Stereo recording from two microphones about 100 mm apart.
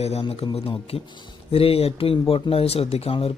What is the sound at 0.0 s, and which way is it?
A man's voice, 90° left.